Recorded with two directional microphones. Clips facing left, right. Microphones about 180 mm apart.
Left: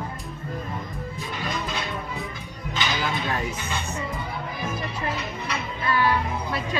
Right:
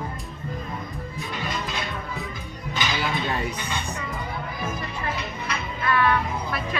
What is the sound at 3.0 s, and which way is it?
Speech, centre (ahead or behind).